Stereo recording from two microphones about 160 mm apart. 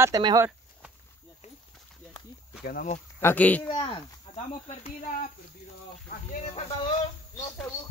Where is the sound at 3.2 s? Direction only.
10° left (ahead or behind).